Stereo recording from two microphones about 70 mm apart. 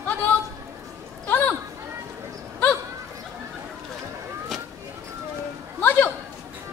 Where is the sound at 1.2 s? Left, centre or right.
Left.